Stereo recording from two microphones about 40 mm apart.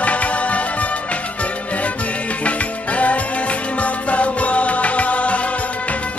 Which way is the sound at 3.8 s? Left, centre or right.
Left.